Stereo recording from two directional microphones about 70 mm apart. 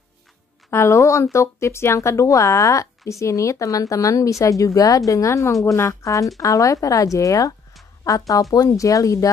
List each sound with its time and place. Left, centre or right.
0.7 s speech: left